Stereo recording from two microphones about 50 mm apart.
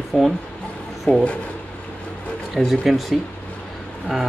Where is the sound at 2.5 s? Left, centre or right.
Centre.